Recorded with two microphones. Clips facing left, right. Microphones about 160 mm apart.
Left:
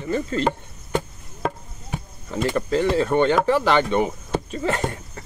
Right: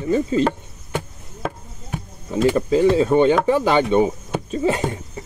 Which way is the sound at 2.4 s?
10° right (ahead or behind).